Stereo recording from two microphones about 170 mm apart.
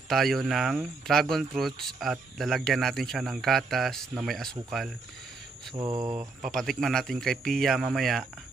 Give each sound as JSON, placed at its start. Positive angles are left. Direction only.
{"t": 0.1, "sound": "speech", "side_deg": 0}
{"t": 5.8, "sound": "speech", "side_deg": -25}
{"t": 6.1, "sound": "speech", "side_deg": 0}